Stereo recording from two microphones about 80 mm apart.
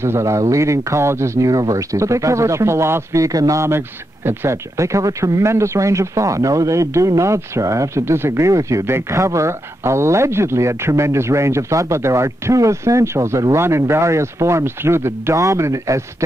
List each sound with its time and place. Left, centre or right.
0.0 s speech: right